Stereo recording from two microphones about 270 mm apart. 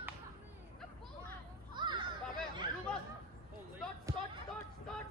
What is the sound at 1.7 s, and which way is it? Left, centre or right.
Children playing, centre.